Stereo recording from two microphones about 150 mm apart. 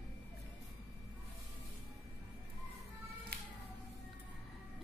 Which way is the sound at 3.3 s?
90° right.